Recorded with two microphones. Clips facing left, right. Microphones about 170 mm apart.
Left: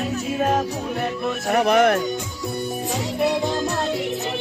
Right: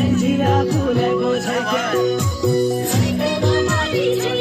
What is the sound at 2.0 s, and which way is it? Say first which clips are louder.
Music: right 9 dB; 90° right.